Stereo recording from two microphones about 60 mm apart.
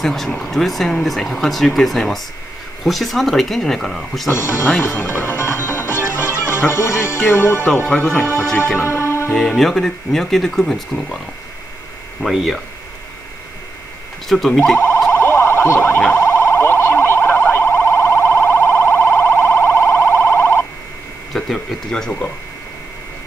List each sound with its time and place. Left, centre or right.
0.0 s speech: centre
4.3 s speech: left
4.9 s music: left
7.2 s speech: left
7.8 s speech: centre
8.8 s music: left
9.6 s speech: centre
12.2 s speech: centre
14.3 s speech: centre
15.0 s police car: left
21.3 s speech: centre